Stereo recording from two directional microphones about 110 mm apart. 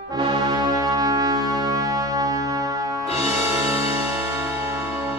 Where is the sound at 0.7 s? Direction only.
35° right (ahead or behind).